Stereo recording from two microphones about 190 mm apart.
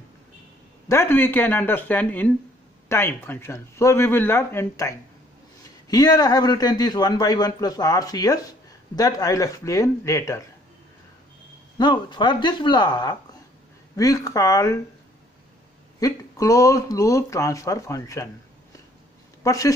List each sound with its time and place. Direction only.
0.8 s a man's voice: 15° left (ahead or behind)
11.8 s a man's voice: 25° left (ahead or behind)
16.0 s speech: 20° left (ahead or behind)
19.4 s speech: 20° left (ahead or behind)